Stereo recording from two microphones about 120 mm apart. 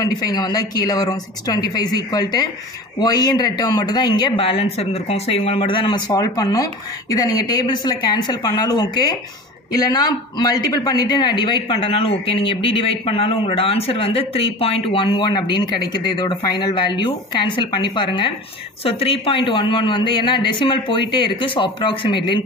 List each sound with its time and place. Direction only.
0.0 s a man's voice: 35° left (ahead or behind)
18.9 s a man's voice: 55° left (ahead or behind)